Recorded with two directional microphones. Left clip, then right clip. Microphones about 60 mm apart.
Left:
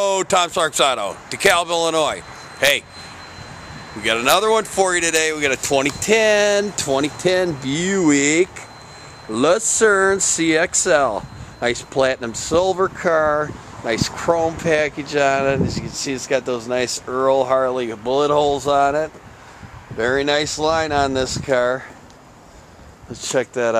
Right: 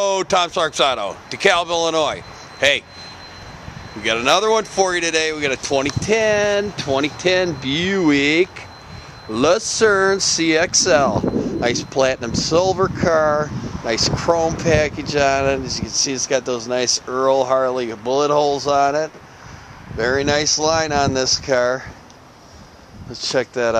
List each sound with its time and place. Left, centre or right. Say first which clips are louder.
0.0 s speech: even; centre
4.0 s speech: even; centre; by 5.9 s left
5.9 s speech: left 2 dB; left
7.2 s speech: right 1 dB; left; by 8.6 s centre
9.3 s speech: even; centre
10.4 s speech: right 1 dB; right
12.3 s speech: right 4 dB; left
12.5 s speech: even; centre
23.2 s speech: right 1 dB; centre